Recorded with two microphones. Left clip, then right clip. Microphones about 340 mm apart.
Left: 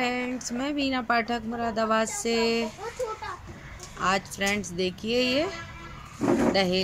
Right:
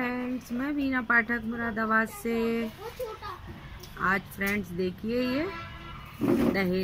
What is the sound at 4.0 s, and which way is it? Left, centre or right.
Speech, centre.